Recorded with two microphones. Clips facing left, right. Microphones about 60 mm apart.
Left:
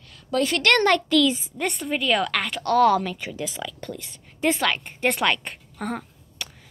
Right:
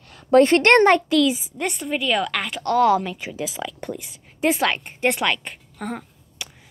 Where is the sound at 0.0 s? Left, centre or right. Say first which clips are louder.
Right 9 dB; right.